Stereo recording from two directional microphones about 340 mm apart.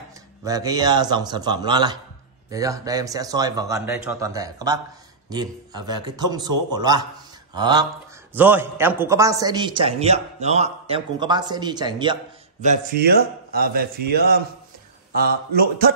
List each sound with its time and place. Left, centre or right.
0.5 s a man's voice: centre; by 14.4 s right
15.5 s a man's voice: right